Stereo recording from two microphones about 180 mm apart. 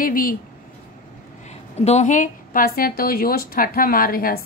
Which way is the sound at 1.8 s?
40° left (ahead or behind).